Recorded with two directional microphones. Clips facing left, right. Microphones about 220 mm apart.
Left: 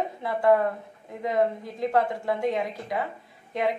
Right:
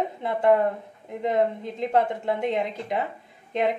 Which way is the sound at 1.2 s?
25° right (ahead or behind).